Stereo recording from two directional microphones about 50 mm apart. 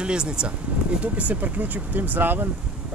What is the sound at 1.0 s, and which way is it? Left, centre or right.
Speech, right.